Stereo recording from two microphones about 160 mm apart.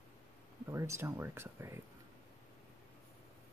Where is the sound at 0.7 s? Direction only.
20° right (ahead or behind).